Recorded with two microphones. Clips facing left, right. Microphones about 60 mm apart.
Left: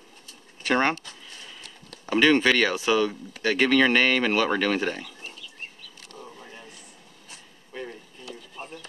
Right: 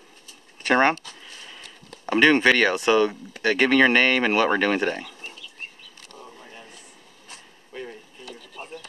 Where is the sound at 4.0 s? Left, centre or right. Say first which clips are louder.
Right 2 dB; centre.